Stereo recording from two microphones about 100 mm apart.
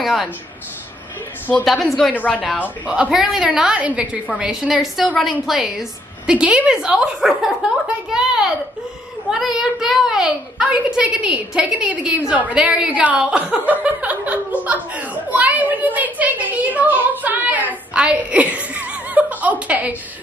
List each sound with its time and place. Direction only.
0.0 s speech: centre (ahead or behind)
1.6 s a woman's voice: centre (ahead or behind)
2.1 s a woman's voice: 15° left (ahead or behind)
2.9 s a woman's voice: 10° right (ahead or behind)